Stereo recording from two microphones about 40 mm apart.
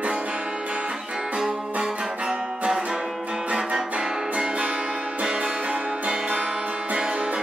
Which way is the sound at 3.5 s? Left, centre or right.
Centre.